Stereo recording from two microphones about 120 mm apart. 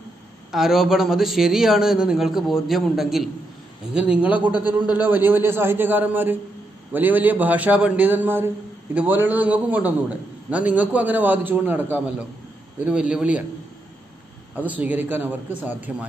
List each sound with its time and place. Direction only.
0.5 s a man's voice: 5° right (ahead or behind)
14.5 s a man's voice: 15° right (ahead or behind)